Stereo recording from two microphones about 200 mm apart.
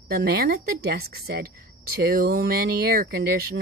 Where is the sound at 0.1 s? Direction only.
50° right (ahead or behind).